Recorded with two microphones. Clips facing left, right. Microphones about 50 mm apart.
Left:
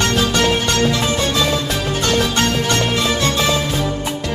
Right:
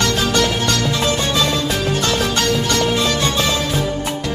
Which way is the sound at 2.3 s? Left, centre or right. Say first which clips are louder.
Even; left.